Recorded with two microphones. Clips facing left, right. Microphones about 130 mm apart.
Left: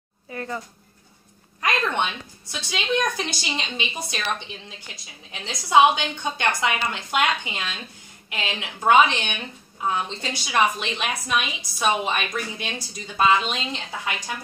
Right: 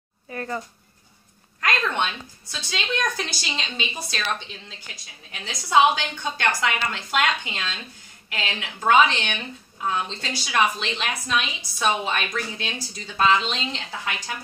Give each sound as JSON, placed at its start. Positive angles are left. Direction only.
{"t": 0.3, "sound": "speech", "side_deg": 10}
{"t": 1.6, "sound": "a woman's voice", "side_deg": 15}
{"t": 5.3, "sound": "a woman's voice", "side_deg": 20}